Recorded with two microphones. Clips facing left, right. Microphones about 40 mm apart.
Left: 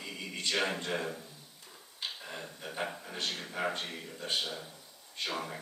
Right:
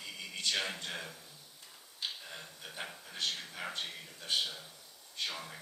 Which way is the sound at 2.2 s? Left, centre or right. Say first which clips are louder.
Left 5 dB; left.